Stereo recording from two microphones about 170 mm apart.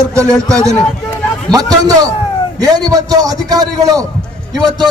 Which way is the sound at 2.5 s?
20° right (ahead or behind).